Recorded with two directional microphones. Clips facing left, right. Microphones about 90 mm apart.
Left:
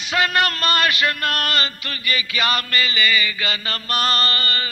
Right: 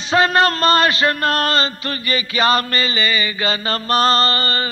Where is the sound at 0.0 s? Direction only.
30° right (ahead or behind).